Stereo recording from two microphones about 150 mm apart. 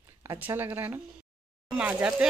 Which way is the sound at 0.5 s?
20° right (ahead or behind).